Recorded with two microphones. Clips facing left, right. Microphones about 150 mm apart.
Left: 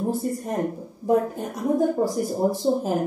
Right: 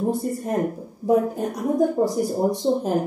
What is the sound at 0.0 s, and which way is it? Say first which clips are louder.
A woman's voice: right 2 dB; centre (ahead or behind).